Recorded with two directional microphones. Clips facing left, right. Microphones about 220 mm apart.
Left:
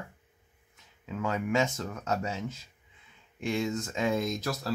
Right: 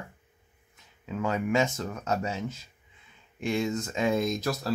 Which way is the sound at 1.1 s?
15° right (ahead or behind).